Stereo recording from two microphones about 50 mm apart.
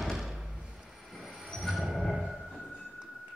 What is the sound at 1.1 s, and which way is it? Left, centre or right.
Music, centre.